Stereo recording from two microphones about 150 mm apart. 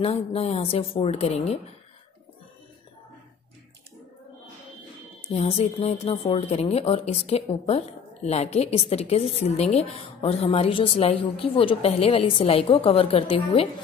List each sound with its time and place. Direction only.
0.0 s speech: 40° left (ahead or behind)
5.3 s a woman's voice: 45° left (ahead or behind)